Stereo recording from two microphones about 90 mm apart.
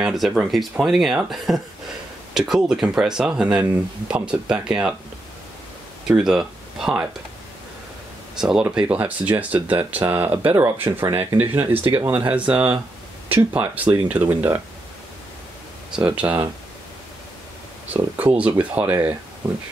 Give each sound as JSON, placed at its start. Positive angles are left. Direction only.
{"t": 0.0, "sound": "speech", "side_deg": -5}
{"t": 6.0, "sound": "speech", "side_deg": -5}
{"t": 8.4, "sound": "speech", "side_deg": -5}
{"t": 10.6, "sound": "speech", "side_deg": -30}
{"t": 16.2, "sound": "speech", "side_deg": -15}
{"t": 17.9, "sound": "speech", "side_deg": -15}